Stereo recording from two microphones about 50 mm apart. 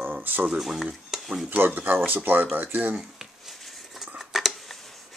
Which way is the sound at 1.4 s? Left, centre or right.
Right.